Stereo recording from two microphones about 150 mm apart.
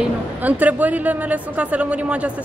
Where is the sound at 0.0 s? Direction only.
10° right (ahead or behind).